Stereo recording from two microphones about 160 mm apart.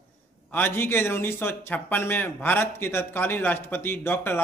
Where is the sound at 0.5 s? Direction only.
10° left (ahead or behind).